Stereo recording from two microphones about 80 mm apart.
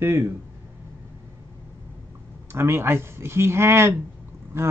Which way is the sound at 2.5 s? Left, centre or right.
Right.